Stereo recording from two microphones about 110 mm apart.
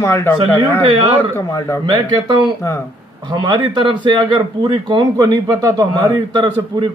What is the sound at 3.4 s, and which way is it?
A man's voice, 45° right (ahead or behind).